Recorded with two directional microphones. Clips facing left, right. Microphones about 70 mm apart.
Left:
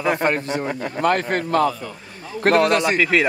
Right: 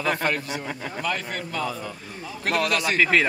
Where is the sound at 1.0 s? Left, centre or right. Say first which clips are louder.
Left 11 dB; left.